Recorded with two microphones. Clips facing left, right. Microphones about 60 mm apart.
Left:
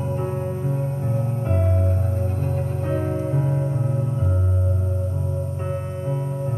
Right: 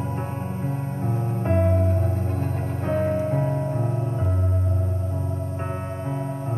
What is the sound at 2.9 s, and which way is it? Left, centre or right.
Music, right.